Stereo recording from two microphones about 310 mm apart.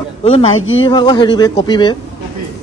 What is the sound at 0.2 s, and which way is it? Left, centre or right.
Speech, centre.